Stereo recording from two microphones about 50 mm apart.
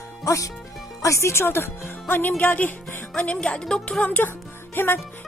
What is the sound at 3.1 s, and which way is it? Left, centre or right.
Speech, left.